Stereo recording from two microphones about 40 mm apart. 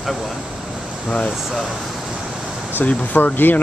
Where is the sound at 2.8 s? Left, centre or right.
Left.